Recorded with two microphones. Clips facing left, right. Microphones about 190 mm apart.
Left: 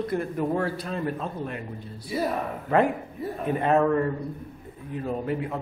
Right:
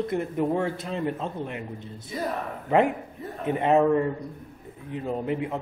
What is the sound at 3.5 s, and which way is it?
A man's voice, 20° right (ahead or behind).